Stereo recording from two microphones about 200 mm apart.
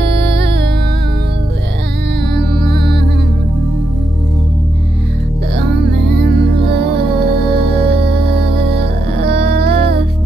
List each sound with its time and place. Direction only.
0.2 s music: 55° right (ahead or behind)
2.5 s music: 50° right (ahead or behind)
5.6 s music: 55° right (ahead or behind)